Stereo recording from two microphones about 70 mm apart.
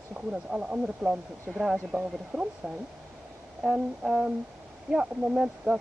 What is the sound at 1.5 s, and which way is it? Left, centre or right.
Speech, centre.